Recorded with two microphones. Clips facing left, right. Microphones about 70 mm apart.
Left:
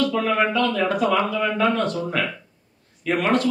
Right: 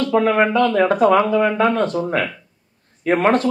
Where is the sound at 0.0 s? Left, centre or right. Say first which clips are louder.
Right 5 dB; right.